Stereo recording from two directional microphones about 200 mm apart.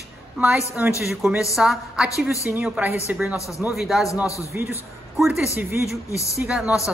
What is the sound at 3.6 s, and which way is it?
Speech, centre (ahead or behind).